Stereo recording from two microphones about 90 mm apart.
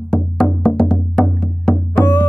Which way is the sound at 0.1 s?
5° left (ahead or behind).